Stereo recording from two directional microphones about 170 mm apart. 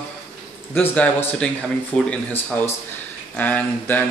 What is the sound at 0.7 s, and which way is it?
Speech, 10° left (ahead or behind).